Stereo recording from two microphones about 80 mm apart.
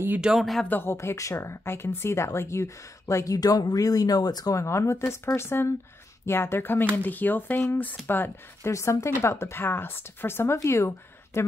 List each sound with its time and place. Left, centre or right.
0.2 s speech: centre
0.7 s speech: left
0.9 s speech: left
3.3 s speech: left
4.6 s speech: left
8.7 s speech: left